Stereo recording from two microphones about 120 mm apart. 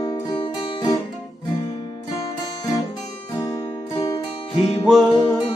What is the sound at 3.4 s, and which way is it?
Music, 30° left (ahead or behind).